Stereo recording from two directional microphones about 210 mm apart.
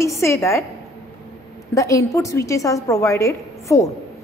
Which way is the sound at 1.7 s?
15° left (ahead or behind).